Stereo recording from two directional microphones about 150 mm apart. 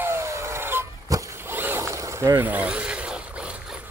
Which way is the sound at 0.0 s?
15° right (ahead or behind).